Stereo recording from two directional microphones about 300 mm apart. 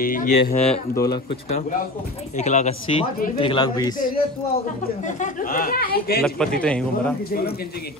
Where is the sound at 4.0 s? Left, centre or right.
Left.